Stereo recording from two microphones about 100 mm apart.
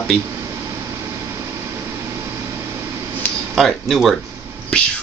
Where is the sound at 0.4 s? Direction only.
35° right (ahead or behind).